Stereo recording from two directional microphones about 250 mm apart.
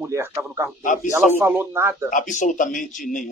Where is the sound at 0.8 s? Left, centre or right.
Left.